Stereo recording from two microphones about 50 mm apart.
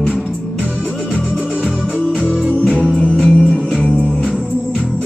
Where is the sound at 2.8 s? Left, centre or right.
Centre.